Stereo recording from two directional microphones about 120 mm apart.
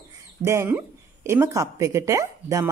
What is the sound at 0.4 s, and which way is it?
A woman's voice, 20° right (ahead or behind).